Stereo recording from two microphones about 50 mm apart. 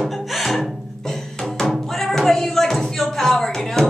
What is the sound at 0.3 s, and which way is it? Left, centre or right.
Music, centre.